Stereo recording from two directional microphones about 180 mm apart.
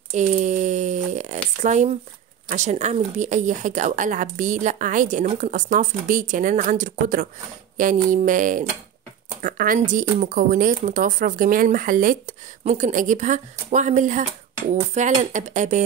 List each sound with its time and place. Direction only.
0.1 s a woman's voice: 40° right (ahead or behind)